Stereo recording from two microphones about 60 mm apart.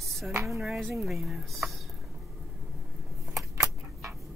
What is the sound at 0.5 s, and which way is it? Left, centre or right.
Speech, centre.